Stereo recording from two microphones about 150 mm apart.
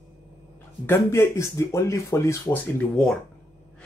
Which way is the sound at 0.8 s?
15° left (ahead or behind).